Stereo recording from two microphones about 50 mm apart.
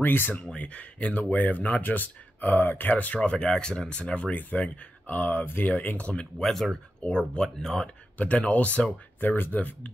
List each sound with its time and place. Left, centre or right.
0.0 s speech: left
0.4 s speech: left
3.2 s speech: left
6.4 s speech: centre
7.0 s speech: left
7.3 s speech: centre
8.2 s speech: left
9.2 s speech: left